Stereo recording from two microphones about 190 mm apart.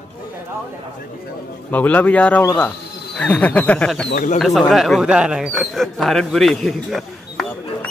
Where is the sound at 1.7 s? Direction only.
10° left (ahead or behind).